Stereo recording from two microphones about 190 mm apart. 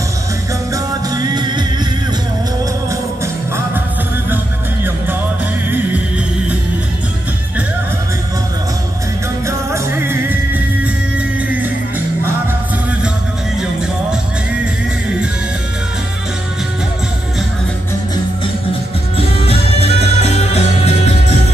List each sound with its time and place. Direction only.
1.1 s music: 20° right (ahead or behind)
5.7 s music: 10° right (ahead or behind)
9.5 s music: 15° right (ahead or behind)
18.7 s music: 30° left (ahead or behind)